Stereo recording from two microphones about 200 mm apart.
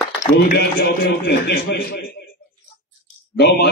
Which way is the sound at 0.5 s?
55° left (ahead or behind).